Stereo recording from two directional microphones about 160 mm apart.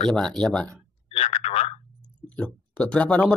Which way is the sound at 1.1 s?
40° left (ahead or behind).